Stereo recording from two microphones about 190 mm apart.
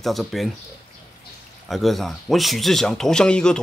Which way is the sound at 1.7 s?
Centre (ahead or behind).